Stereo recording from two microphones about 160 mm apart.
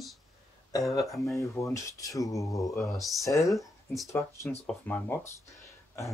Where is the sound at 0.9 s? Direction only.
20° left (ahead or behind).